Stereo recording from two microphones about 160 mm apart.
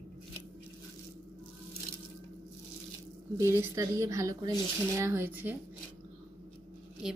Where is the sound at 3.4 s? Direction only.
15° right (ahead or behind).